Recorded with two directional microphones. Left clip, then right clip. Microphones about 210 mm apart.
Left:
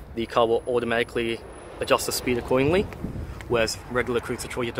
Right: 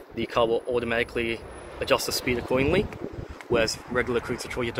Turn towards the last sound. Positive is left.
turn(degrees=5)  # may be behind; listen again after turning